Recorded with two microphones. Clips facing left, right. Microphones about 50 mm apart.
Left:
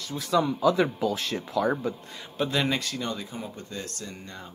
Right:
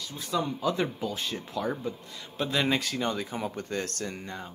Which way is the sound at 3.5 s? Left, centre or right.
Right.